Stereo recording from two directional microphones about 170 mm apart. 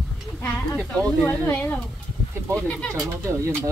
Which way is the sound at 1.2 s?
10° left (ahead or behind).